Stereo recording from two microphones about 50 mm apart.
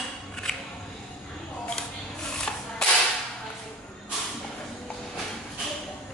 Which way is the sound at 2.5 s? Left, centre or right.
Centre.